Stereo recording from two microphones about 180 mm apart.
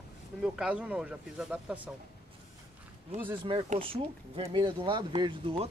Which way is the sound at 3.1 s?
40° right (ahead or behind).